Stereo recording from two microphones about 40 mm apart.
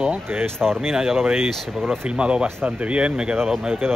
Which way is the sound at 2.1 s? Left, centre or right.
Right.